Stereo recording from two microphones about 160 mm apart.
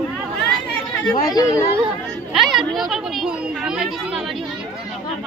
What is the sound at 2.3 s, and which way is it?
Speech, centre (ahead or behind).